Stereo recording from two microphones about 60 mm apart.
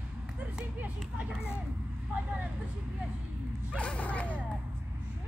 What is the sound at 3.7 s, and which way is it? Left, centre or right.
Speech, left.